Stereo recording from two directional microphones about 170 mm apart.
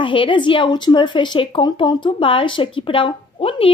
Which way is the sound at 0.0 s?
30° left (ahead or behind).